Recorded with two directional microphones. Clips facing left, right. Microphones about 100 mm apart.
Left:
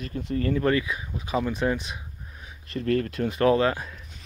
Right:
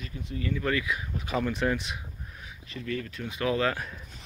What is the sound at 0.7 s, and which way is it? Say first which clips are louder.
Speech: left 4 dB; 30° left (ahead or behind).